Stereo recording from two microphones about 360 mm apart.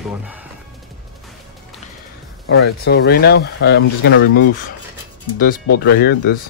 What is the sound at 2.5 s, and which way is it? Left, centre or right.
Speech, left.